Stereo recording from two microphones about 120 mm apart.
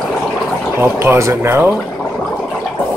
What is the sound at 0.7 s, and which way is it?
Speech, 20° right (ahead or behind).